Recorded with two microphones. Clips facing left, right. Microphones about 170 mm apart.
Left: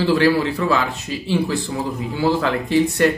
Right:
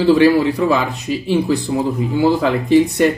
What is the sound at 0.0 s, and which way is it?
Speech, 15° right (ahead or behind).